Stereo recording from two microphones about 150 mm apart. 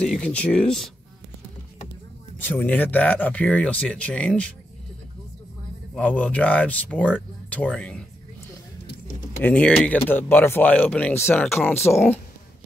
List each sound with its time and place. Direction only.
0.0 s speech: 5° left (ahead or behind)
2.4 s speech: 10° left (ahead or behind)
5.9 s speech: 10° left (ahead or behind)
9.4 s speech: 10° left (ahead or behind)